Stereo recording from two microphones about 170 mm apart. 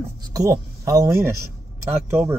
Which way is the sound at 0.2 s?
20° right (ahead or behind).